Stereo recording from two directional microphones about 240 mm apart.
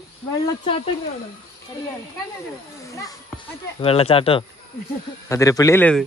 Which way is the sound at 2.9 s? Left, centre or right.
Centre.